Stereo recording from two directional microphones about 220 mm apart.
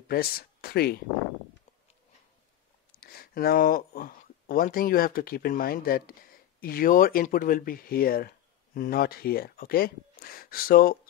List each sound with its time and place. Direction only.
0.1 s speech: 45° left (ahead or behind)
3.0 s speech: 45° left (ahead or behind)